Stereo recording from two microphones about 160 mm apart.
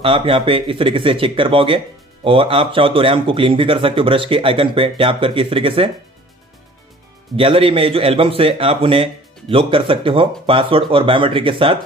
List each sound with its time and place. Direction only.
0.0 s a man's voice: 35° right (ahead or behind)
7.3 s a man's voice: 35° right (ahead or behind)